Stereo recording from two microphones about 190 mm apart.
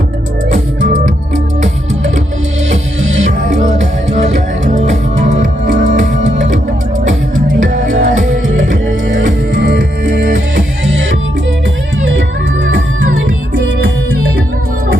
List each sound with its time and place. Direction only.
3.3 s music: 40° right (ahead or behind)
7.6 s music: 45° right (ahead or behind)
9.6 s music: 55° right (ahead or behind)
10.8 s music: 75° right (ahead or behind)